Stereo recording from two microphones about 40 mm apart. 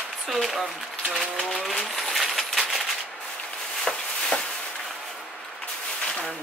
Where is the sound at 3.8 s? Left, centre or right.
Centre.